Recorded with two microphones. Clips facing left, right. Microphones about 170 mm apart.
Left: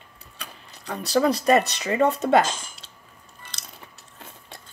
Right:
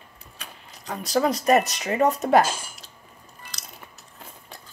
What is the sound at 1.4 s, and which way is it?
Speech, 30° left (ahead or behind).